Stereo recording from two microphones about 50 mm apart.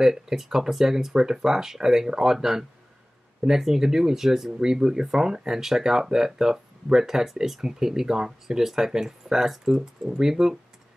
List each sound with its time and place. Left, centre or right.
0.0 s speech: centre